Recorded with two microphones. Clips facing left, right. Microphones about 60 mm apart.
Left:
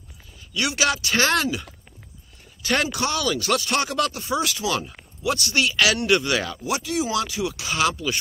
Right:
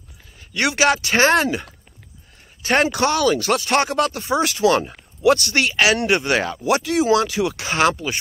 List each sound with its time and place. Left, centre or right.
0.4 s speech: right
6.2 s speech: right
6.6 s speech: right
7.5 s speech: right